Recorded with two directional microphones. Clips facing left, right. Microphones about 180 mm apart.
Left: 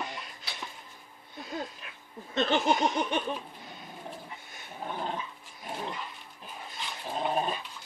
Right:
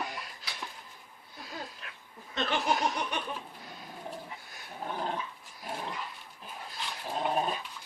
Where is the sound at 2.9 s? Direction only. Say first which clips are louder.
Left 5 dB; 25° left (ahead or behind).